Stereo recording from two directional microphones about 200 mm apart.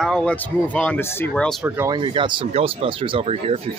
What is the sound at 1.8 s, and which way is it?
Speech, 20° right (ahead or behind).